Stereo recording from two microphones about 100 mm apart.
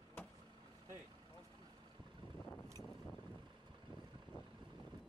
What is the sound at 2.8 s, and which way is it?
Boat, 40° left (ahead or behind).